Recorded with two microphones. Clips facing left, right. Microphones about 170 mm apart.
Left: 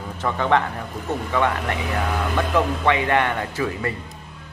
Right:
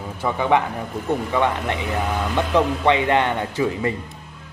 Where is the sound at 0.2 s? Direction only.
10° right (ahead or behind).